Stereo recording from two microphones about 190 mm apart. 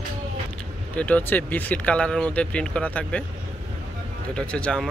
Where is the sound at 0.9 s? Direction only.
10° left (ahead or behind).